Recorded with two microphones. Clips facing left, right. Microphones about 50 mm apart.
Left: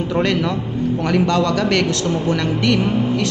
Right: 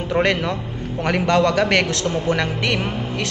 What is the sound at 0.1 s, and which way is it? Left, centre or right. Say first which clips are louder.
A woman's voice: right 1 dB; right.